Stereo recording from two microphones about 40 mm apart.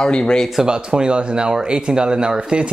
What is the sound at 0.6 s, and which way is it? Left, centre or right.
Speech, right.